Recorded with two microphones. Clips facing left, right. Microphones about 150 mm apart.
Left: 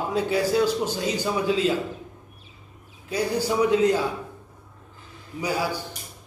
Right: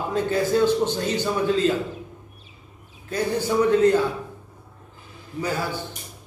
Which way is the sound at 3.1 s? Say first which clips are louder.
Right 1 dB; 10° left (ahead or behind).